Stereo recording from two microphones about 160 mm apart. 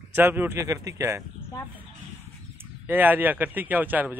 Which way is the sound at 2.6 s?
10° right (ahead or behind).